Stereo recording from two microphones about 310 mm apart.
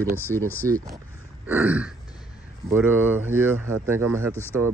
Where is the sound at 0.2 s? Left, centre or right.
Centre.